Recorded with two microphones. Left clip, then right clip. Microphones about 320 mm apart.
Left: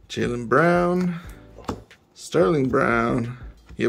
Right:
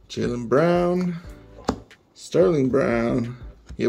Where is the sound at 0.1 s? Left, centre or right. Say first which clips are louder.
Left 1 dB; centre.